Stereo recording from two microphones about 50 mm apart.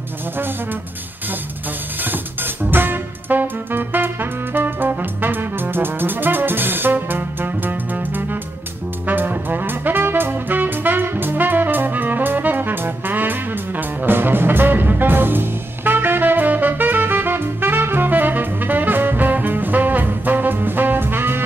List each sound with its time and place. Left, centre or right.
2.0 s music: right
9.0 s brass instrument: right